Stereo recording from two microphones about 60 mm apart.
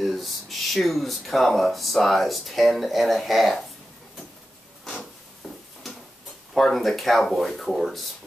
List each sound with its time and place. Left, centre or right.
0.0 s speech: centre
6.5 s speech: centre